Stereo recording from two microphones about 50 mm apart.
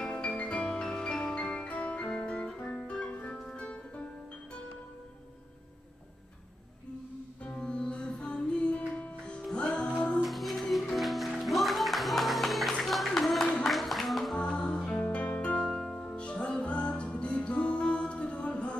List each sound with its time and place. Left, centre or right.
0.0 s music: centre
7.4 s music: centre
10.2 s music: centre
13.7 s a sound: centre
14.4 s music: centre
15.0 s music: left